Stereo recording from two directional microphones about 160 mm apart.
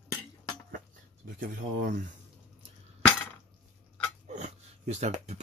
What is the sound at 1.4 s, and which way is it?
Speech, 65° right (ahead or behind).